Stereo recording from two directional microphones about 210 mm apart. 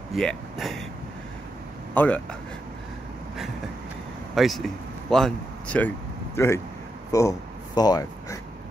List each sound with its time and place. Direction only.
0.1 s speech: centre (ahead or behind)
2.0 s speech: 5° left (ahead or behind)
4.4 s speech: centre (ahead or behind); by 8.4 s 20° left (ahead or behind)